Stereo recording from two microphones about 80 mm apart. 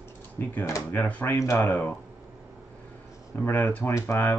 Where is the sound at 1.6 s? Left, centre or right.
Left.